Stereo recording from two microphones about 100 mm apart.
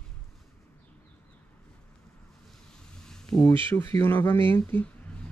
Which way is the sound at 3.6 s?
20° left (ahead or behind).